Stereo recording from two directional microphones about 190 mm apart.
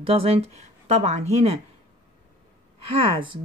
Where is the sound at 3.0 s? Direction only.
25° right (ahead or behind).